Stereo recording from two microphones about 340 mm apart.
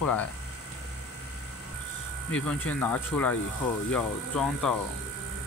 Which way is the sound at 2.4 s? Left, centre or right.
Centre.